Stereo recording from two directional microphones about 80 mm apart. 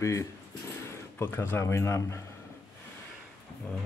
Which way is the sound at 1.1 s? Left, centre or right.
Left.